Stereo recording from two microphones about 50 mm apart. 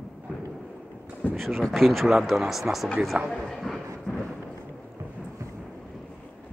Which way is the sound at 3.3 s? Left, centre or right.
Centre.